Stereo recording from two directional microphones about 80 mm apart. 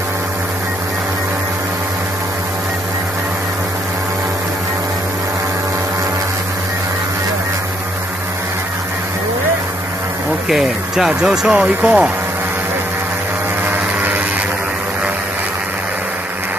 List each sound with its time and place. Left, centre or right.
10.5 s speech: centre
13.7 s vehicle: right